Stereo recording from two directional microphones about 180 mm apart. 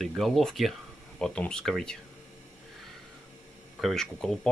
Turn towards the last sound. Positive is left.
turn(degrees=0)  # may be behind; listen again after turning